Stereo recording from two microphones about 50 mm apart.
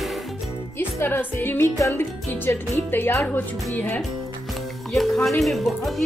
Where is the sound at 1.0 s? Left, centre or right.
Left.